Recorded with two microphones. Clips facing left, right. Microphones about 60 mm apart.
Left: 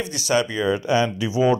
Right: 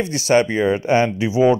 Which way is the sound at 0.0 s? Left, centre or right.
Right.